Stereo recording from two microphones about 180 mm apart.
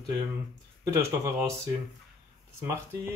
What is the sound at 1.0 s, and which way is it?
Speech, 15° right (ahead or behind).